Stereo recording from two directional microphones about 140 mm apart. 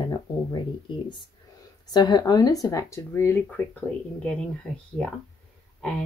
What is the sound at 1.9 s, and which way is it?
Speech, 30° left (ahead or behind).